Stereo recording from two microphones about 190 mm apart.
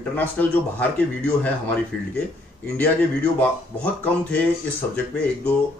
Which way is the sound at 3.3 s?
5° left (ahead or behind).